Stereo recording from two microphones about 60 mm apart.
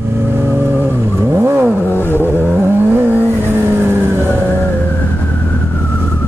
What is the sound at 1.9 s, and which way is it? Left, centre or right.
Vehicle, left.